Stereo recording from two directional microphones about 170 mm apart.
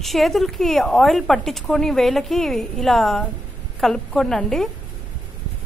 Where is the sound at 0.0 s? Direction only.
Centre (ahead or behind).